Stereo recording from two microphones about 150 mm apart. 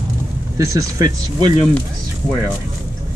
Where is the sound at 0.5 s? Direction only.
20° right (ahead or behind).